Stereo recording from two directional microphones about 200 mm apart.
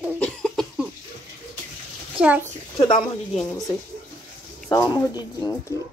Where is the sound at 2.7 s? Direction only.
20° left (ahead or behind).